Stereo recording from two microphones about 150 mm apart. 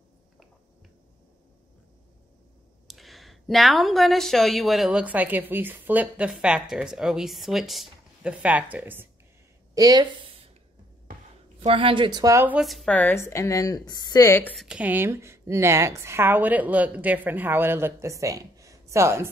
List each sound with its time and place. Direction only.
2.9 s speech: centre (ahead or behind)
9.8 s speech: 25° right (ahead or behind)
11.6 s speech: 35° right (ahead or behind); by 12.5 s 20° right (ahead or behind)
12.5 s a woman's voice: centre (ahead or behind); by 14.5 s 20° left (ahead or behind)
14.6 s a woman's voice: 5° right (ahead or behind)